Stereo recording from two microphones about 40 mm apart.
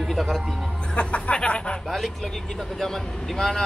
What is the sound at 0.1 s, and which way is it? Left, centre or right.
Speech, centre.